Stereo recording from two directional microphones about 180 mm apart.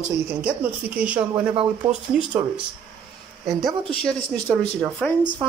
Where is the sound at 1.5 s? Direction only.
30° right (ahead or behind).